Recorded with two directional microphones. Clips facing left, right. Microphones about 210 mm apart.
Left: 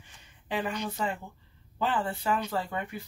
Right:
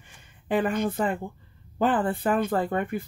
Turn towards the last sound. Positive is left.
turn(degrees=-50)  # may be behind; listen again after turning